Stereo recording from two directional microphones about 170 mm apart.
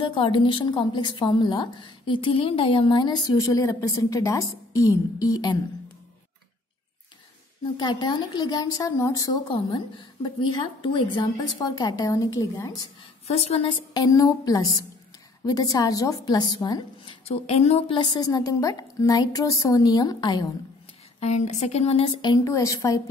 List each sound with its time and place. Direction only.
0.0 s a woman's voice: 30° left (ahead or behind)
7.7 s a woman's voice: 25° left (ahead or behind)
13.3 s a woman's voice: 35° left (ahead or behind)
21.2 s a woman's voice: 40° left (ahead or behind); by 23.0 s 20° left (ahead or behind)